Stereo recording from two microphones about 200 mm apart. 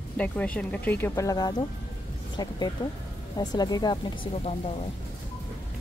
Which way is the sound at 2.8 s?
25° left (ahead or behind).